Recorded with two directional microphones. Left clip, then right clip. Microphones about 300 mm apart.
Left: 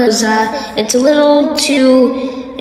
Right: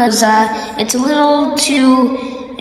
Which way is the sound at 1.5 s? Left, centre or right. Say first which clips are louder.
Left 1 dB; left.